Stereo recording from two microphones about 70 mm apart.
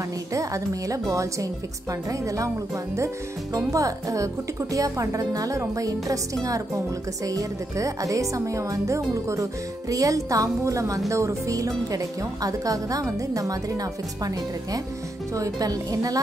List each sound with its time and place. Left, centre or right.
0.3 s speech: right